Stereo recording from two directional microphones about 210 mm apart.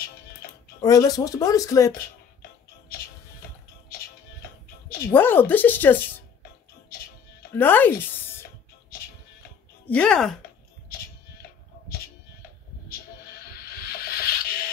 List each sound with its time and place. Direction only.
0.7 s speech: 15° left (ahead or behind)
4.8 s a sound: 45° left (ahead or behind)
5.1 s speech: 10° left (ahead or behind)
7.5 s speech: 10° left (ahead or behind)
9.8 s speech: 5° left (ahead or behind)
13.8 s music: 45° left (ahead or behind)